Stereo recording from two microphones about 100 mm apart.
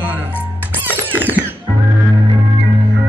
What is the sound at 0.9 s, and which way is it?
Music, 20° right (ahead or behind).